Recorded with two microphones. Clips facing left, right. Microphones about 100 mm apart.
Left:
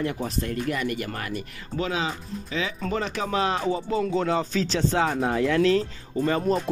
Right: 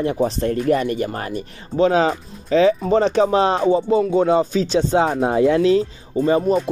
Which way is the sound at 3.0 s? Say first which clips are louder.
Right 8 dB; 30° right (ahead or behind).